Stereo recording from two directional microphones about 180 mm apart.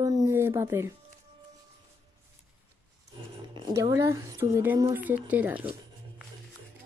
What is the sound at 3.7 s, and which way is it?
Speech, 15° right (ahead or behind).